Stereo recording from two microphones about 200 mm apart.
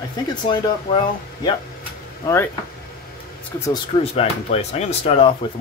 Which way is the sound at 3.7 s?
30° left (ahead or behind).